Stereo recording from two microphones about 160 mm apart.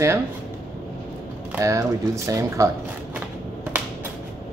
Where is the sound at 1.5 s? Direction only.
20° right (ahead or behind).